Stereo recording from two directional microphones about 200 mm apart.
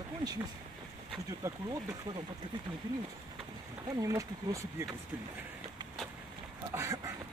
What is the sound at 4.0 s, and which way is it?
Speech, 15° right (ahead or behind).